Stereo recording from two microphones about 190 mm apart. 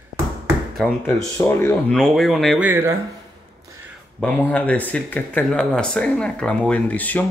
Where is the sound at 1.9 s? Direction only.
Centre (ahead or behind).